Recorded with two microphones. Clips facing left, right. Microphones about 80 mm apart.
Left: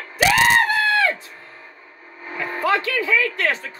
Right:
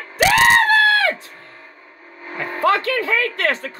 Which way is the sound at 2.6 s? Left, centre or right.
Right.